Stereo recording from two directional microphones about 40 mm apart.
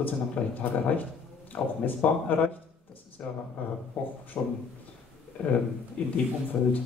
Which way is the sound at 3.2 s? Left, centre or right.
Left.